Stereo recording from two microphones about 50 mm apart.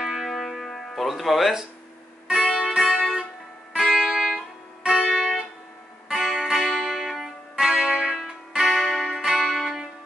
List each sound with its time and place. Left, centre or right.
0.0 s music: centre
2.2 s music: centre
8.6 s music: centre
9.0 s music: centre